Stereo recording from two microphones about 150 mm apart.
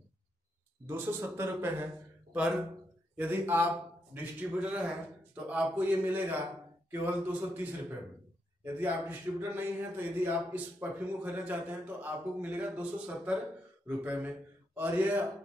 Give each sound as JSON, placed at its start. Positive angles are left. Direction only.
{"t": 0.8, "sound": "speech", "side_deg": -15}
{"t": 8.6, "sound": "speech", "side_deg": -10}